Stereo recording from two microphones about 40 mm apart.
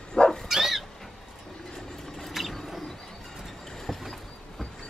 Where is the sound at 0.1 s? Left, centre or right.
Centre.